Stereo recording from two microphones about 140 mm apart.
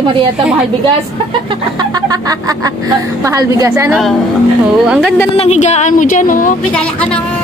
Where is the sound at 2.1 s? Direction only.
25° right (ahead or behind).